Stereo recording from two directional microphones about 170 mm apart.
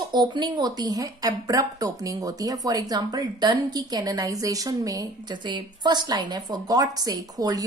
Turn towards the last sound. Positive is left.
turn(degrees=-20)  # may be behind; listen again after turning